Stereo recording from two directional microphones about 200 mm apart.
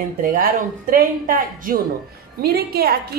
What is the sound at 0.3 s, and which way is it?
A woman's voice, 45° right (ahead or behind).